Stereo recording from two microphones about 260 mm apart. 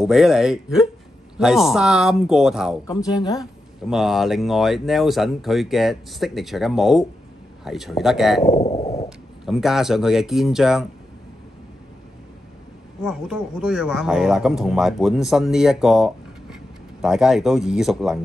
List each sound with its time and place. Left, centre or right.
0.0 s speech: centre
3.2 s a woman's voice: centre
3.9 s speech: centre
8.5 s a sound: left
9.5 s speech: centre
13.0 s speech: centre